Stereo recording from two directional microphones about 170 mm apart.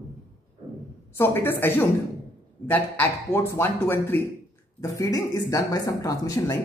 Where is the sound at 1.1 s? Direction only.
15° left (ahead or behind).